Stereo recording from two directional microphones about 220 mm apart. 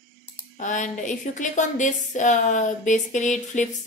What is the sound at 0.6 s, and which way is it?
A woman's voice, 35° left (ahead or behind).